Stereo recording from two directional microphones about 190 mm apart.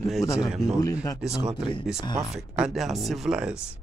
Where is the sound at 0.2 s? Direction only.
15° left (ahead or behind).